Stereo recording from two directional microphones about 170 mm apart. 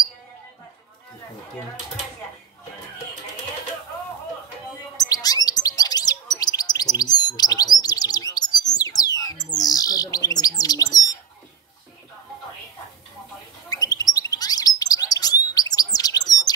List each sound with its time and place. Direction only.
4.9 s chirp: 20° left (ahead or behind)
13.7 s bird: 20° left (ahead or behind)